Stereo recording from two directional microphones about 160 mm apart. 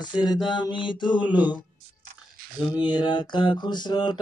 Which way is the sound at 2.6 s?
30° left (ahead or behind).